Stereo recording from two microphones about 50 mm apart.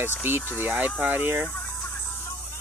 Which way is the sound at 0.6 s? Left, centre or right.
Right.